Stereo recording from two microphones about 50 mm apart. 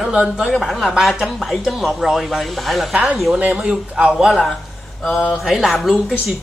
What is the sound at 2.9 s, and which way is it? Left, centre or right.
A woman's voice, right.